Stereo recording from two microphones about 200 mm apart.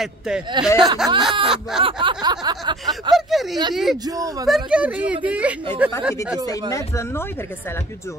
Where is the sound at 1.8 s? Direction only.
25° right (ahead or behind).